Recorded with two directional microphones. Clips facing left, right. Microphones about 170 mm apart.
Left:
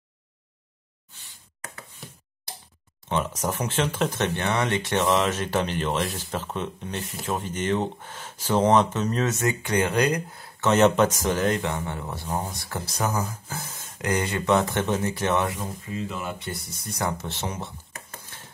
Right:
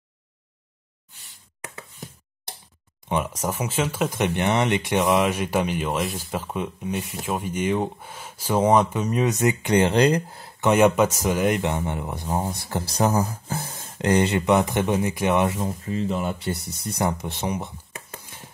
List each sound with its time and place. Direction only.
3.1 s speech: 10° right (ahead or behind); by 10.5 s 30° right (ahead or behind)
10.6 s speech: 10° right (ahead or behind)
15.5 s speech: 35° right (ahead or behind); by 17.7 s 15° right (ahead or behind)
18.2 s a sound: 10° right (ahead or behind)